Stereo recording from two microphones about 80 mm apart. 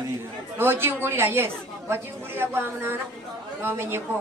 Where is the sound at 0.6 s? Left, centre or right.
Right.